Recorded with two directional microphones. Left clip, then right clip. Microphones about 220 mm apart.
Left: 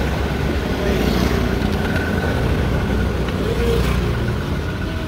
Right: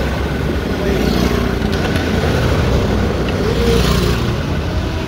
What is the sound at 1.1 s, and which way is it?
Vehicle, 40° right (ahead or behind).